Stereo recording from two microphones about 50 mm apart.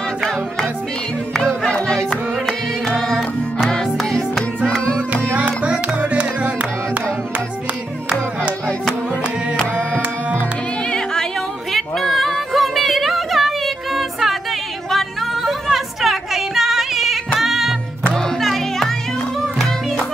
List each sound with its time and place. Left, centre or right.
1.6 s music: centre
5.4 s music: right
9.6 s music: centre
11.7 s music: centre